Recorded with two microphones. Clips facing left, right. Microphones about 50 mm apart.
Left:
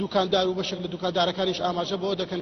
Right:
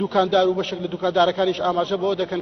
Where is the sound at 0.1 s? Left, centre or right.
Right.